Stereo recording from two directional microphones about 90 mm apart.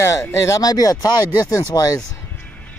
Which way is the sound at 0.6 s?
45° left (ahead or behind).